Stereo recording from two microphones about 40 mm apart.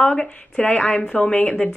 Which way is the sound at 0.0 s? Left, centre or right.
Left.